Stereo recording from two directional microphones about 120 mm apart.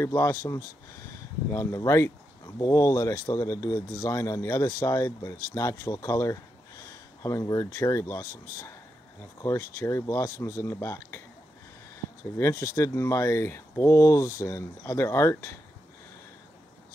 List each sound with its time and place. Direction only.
0.0 s speech: 25° left (ahead or behind)
12.4 s speech: 25° left (ahead or behind)